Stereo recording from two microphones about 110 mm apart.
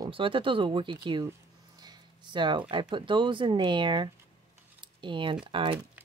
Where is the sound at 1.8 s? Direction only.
40° right (ahead or behind).